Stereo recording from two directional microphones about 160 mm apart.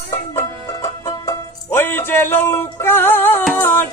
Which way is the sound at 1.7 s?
15° left (ahead or behind).